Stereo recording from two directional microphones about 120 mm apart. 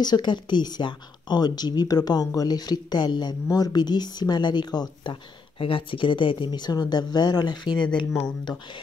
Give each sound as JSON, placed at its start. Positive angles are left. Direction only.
{"t": 0.0, "sound": "speech", "side_deg": 35}